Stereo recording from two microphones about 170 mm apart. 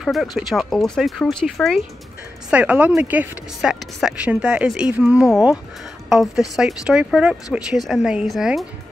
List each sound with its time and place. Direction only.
0.0 s speech: centre (ahead or behind)